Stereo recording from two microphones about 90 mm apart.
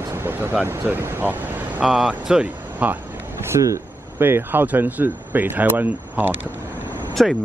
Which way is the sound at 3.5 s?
35° right (ahead or behind).